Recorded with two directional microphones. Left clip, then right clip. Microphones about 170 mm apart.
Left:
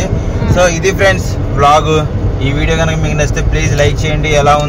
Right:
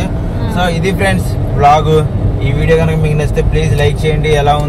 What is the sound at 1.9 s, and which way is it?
Speech, 70° left (ahead or behind).